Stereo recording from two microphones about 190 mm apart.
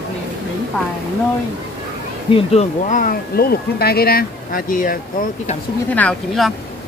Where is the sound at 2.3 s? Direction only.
30° left (ahead or behind).